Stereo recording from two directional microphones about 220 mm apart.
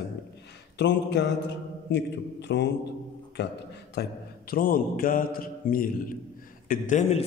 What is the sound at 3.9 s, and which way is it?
Mantra, 45° left (ahead or behind).